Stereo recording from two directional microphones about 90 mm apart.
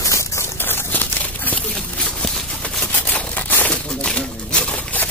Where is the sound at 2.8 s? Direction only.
15° left (ahead or behind).